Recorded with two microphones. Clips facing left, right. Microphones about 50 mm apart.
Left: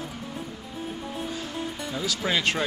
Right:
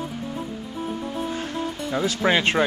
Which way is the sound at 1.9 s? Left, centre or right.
Right.